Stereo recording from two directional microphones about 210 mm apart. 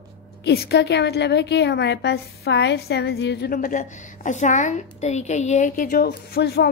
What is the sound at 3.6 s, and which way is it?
A woman's voice, 35° left (ahead or behind).